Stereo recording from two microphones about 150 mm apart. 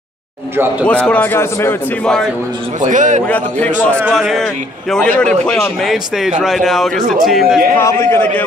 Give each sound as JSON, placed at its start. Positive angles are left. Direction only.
{"t": 0.8, "sound": "a man's voice", "side_deg": 10}
{"t": 2.8, "sound": "a man's voice", "side_deg": -55}
{"t": 3.3, "sound": "a man's voice", "side_deg": 10}
{"t": 7.7, "sound": "a man's voice", "side_deg": 15}